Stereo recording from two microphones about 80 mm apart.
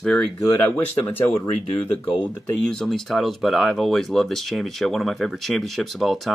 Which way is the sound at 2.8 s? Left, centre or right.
Centre.